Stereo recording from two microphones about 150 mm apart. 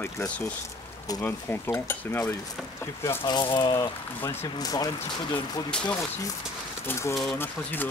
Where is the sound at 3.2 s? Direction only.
30° left (ahead or behind).